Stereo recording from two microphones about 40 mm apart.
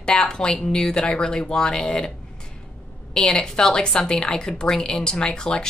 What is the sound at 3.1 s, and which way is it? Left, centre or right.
Speech, centre.